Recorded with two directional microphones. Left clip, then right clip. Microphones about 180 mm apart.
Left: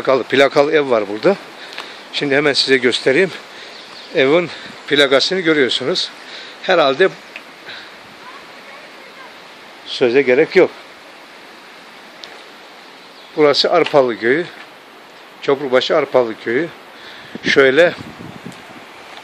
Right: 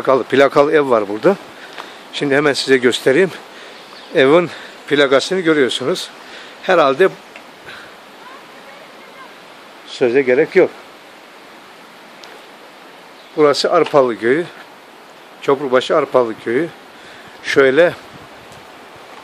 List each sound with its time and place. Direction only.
0.0 s speech: 10° right (ahead or behind)
4.8 s speech: 5° right (ahead or behind)
9.8 s speech: 5° left (ahead or behind)
13.4 s speech: centre (ahead or behind)